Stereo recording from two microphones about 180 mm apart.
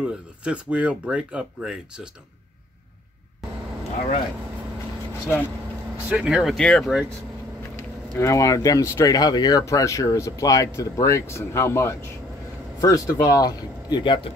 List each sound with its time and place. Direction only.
0.0 s speech: 5° right (ahead or behind)
6.0 s speech: 5° right (ahead or behind)
8.2 s speech: 15° left (ahead or behind)